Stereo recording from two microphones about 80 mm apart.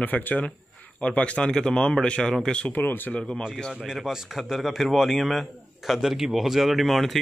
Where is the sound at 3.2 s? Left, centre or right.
Centre.